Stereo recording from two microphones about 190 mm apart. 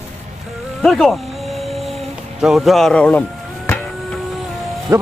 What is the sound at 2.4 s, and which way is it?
Speech, centre (ahead or behind).